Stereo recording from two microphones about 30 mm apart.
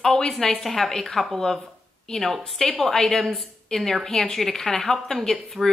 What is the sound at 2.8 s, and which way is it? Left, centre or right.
A woman's voice, centre.